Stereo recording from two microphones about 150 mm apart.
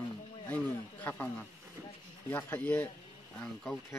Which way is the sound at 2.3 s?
10° left (ahead or behind).